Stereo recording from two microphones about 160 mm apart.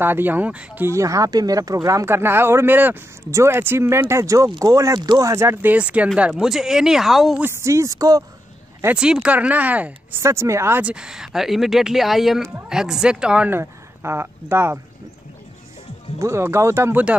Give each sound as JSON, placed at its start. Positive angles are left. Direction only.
{"t": 0.0, "sound": "speech", "side_deg": -10}
{"t": 7.4, "sound": "speech", "side_deg": -20}
{"t": 8.8, "sound": "speech", "side_deg": -5}
{"t": 16.2, "sound": "speech", "side_deg": -15}